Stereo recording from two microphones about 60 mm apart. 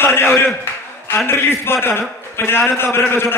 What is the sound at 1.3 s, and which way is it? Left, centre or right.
Speech, left.